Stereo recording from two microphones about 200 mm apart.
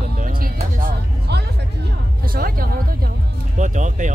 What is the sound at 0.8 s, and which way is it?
Music, 55° right (ahead or behind).